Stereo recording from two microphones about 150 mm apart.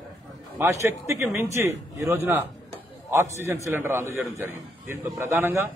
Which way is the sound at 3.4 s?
20° right (ahead or behind).